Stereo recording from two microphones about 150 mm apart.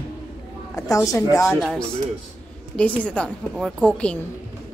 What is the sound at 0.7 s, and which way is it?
Speech, 25° left (ahead or behind).